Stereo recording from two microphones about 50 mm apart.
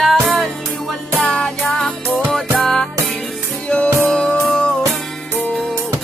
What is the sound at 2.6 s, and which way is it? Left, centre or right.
Music, centre.